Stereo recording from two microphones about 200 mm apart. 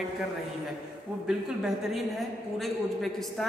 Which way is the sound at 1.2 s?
Centre (ahead or behind).